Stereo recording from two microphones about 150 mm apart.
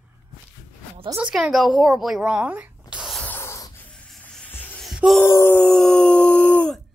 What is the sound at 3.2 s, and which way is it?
Snort, 15° left (ahead or behind).